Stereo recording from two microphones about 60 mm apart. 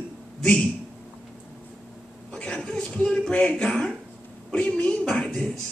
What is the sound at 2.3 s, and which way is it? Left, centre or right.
Chuckle, centre.